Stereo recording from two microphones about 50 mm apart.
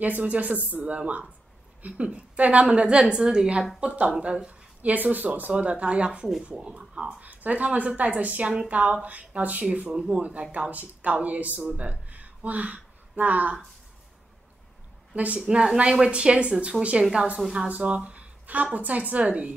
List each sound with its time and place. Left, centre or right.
0.2 s a woman's voice: right
3.8 s speech: right
4.9 s speech: right
6.2 s speech: centre
6.6 s speech: centre
7.2 s speech: right
15.1 s speech: right
15.4 s a woman's voice: centre
17.6 s speech: right